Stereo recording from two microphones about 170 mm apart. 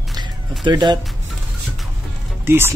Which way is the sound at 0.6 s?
25° right (ahead or behind).